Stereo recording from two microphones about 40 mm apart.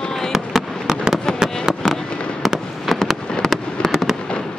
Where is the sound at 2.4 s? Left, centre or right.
Centre.